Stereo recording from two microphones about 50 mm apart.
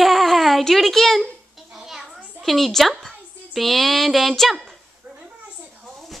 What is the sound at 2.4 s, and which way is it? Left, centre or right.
A child's voice, centre.